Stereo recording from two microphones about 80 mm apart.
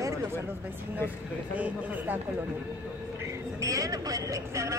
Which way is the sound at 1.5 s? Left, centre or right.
Right.